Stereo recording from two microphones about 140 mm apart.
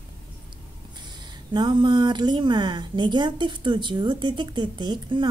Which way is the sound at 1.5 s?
35° right (ahead or behind).